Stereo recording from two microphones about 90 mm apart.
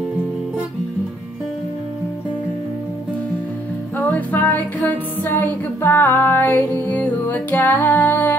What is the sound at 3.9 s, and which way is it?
Music, 20° left (ahead or behind).